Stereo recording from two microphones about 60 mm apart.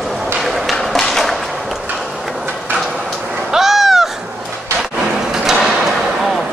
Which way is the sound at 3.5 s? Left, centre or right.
Centre.